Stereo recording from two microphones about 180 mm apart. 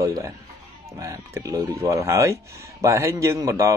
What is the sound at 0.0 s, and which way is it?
Speech, 15° right (ahead or behind).